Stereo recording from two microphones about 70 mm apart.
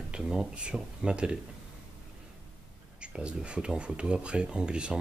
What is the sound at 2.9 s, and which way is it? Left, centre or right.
Speech, centre.